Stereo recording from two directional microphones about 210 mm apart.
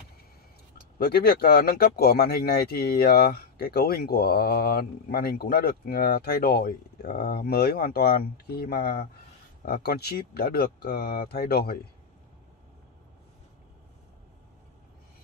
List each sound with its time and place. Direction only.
0.9 s speech: 50° left (ahead or behind)